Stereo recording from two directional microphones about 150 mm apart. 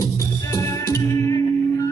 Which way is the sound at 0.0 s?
20° left (ahead or behind).